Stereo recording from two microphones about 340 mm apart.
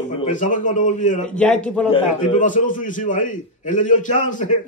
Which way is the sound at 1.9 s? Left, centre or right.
Left.